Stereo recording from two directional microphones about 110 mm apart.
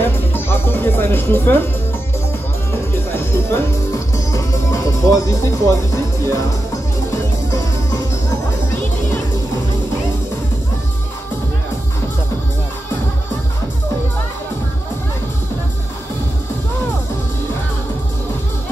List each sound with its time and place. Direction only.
0.0 s music: 20° left (ahead or behind)
2.7 s music: 20° left (ahead or behind)